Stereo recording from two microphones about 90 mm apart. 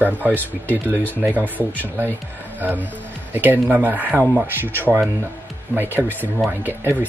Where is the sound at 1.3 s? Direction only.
15° left (ahead or behind).